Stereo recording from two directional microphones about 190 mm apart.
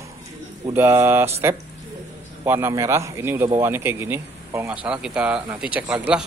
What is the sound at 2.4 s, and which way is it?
A man's voice, 15° right (ahead or behind).